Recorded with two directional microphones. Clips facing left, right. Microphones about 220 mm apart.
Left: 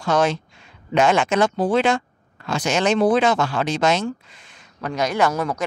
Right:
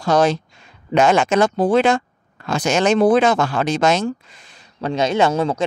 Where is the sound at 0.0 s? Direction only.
35° right (ahead or behind).